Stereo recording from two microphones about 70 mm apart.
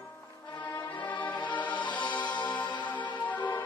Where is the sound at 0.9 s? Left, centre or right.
Left.